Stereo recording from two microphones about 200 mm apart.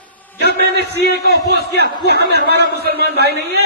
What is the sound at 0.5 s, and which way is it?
Speech, 55° left (ahead or behind).